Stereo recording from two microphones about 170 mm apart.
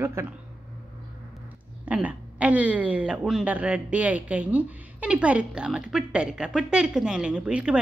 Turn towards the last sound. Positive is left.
turn(degrees=-5)  # may be behind; listen again after turning